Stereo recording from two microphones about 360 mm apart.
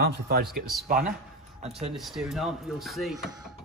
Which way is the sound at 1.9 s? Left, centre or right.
Centre.